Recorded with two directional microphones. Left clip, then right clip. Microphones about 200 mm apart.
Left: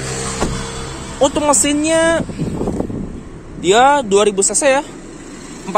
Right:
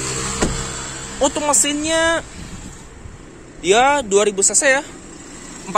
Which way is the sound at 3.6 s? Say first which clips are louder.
Left 3 dB; 5° left (ahead or behind).